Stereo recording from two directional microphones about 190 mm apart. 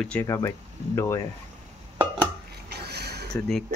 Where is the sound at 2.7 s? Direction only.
60° right (ahead or behind).